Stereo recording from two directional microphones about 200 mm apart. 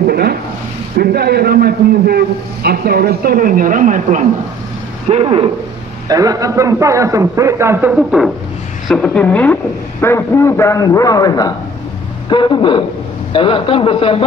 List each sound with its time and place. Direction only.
0.0 s a sound: 50° right (ahead or behind)
0.9 s a man's voice: 55° right (ahead or behind)
5.1 s speech: 30° right (ahead or behind)
6.0 s a man's voice: 20° right (ahead or behind); by 14.2 s 25° left (ahead or behind)